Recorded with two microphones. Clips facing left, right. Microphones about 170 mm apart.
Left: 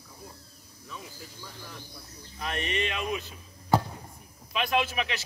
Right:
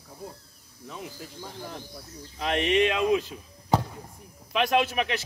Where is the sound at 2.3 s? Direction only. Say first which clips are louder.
Right 8 dB; 90° right.